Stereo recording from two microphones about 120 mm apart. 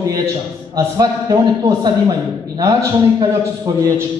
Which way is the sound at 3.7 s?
30° right (ahead or behind).